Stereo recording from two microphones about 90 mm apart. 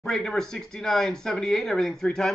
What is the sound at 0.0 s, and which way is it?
Speech, 5° left (ahead or behind).